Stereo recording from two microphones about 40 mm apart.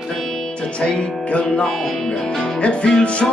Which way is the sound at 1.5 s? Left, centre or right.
Centre.